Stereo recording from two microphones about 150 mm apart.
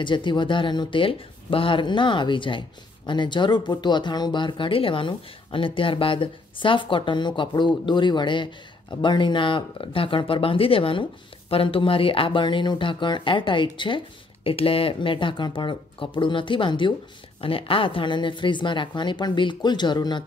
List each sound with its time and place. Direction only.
0.0 s speech: 30° left (ahead or behind)